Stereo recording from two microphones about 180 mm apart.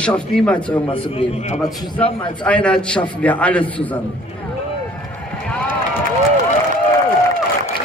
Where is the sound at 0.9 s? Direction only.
30° left (ahead or behind).